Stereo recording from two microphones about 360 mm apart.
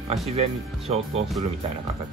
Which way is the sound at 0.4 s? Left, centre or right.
Centre.